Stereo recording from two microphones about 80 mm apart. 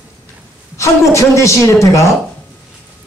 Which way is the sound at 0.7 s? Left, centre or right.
Left.